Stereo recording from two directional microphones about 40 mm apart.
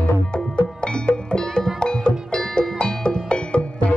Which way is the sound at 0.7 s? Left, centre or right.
Left.